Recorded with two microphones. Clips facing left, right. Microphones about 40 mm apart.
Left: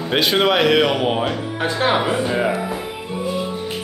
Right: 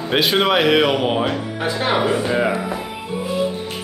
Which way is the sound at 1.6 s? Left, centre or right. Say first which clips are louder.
Left 2 dB; left.